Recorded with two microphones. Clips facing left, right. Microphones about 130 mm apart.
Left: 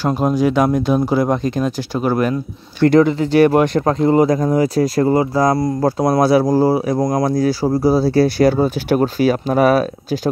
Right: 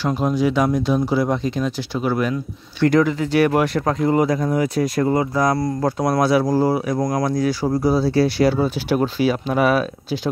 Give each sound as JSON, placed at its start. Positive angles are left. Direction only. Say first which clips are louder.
{"t": 0.0, "sound": "speech", "louder": "left 3 dB", "side_deg": 45}
{"t": 2.9, "sound": "speech", "louder": "left 5 dB", "side_deg": 30}
{"t": 7.2, "sound": "speech", "louder": "left 4 dB", "side_deg": 35}